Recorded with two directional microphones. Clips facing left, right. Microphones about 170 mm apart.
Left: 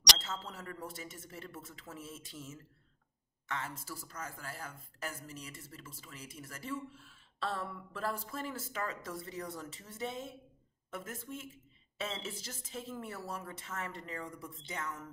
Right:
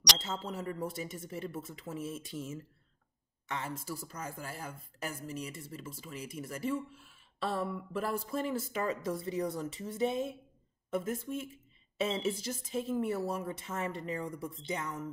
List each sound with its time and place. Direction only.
0.2 s speech: 15° right (ahead or behind)